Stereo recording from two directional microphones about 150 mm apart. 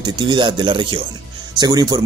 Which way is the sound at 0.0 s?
30° right (ahead or behind).